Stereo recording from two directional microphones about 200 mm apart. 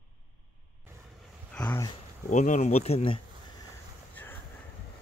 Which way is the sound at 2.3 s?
35° left (ahead or behind).